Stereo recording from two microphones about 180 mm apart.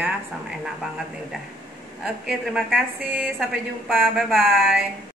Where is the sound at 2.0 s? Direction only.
Centre (ahead or behind).